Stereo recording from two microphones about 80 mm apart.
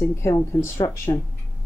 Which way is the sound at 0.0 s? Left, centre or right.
Left.